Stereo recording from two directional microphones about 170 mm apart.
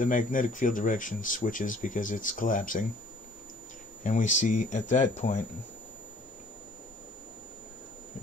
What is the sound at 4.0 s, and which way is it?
Speech, 50° left (ahead or behind).